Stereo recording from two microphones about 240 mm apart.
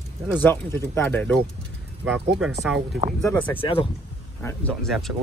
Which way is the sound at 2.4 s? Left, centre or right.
Centre.